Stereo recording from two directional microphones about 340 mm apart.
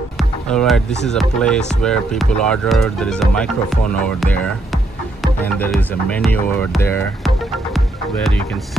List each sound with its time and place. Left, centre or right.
0.2 s speech: centre